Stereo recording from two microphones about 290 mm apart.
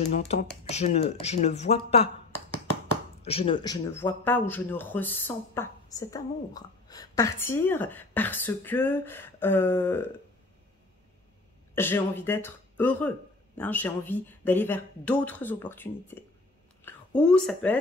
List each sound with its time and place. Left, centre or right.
0.1 s speech: left
3.2 s speech: centre
11.7 s speech: centre